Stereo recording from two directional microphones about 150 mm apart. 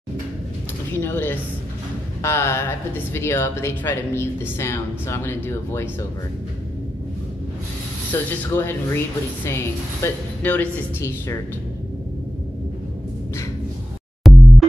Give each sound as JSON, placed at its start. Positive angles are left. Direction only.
{"t": 0.9, "sound": "speech", "side_deg": 15}
{"t": 8.1, "sound": "speech", "side_deg": 15}
{"t": 14.2, "sound": "music", "side_deg": 0}